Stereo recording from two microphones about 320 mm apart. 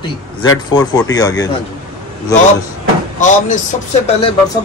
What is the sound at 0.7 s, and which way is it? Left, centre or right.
Speech, centre.